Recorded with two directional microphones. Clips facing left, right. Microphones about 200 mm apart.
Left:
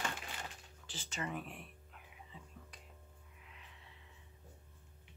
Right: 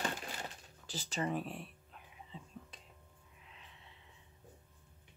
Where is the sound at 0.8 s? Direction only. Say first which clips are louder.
Right 6 dB; 40° right (ahead or behind).